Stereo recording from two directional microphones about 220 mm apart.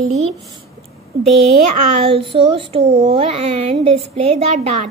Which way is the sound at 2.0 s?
25° right (ahead or behind).